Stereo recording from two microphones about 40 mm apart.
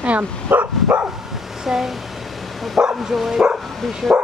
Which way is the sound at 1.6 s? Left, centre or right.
Centre.